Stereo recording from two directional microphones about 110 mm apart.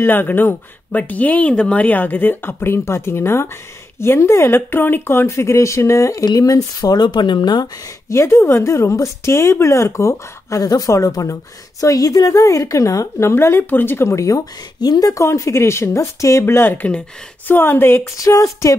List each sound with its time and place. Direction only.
0.0 s a woman's voice: 20° left (ahead or behind); by 7.7 s 40° left (ahead or behind)
8.1 s a woman's voice: 25° left (ahead or behind)
18.1 s a sound: 30° left (ahead or behind)